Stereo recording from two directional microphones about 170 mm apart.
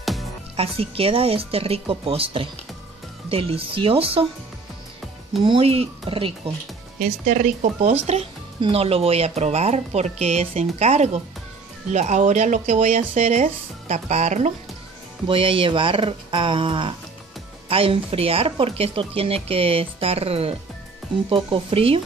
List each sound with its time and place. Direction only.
0.6 s speech: 35° right (ahead or behind)
5.4 s speech: 30° right (ahead or behind)
7.0 s speech: 50° right (ahead or behind)
8.1 s speech: 35° right (ahead or behind)
15.2 s speech: 30° right (ahead or behind)